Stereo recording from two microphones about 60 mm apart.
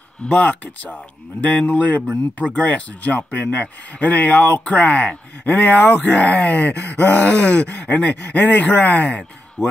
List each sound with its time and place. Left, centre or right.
0.2 s speech: left
9.0 s speech: centre